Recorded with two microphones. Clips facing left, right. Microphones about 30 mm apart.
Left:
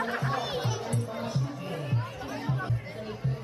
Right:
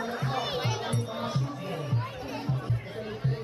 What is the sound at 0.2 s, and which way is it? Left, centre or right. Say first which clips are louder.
Music: even; centre.